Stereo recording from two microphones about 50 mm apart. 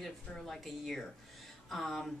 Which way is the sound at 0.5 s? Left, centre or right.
Centre.